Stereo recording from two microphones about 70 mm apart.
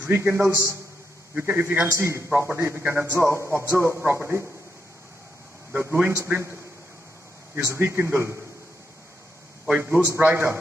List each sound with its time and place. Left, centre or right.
0.0 s a man's voice: right
1.9 s a man's voice: right
5.8 s a man's voice: right
9.8 s a man's voice: right